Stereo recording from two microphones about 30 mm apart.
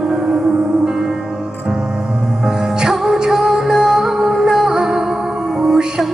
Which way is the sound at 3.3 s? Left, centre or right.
Centre.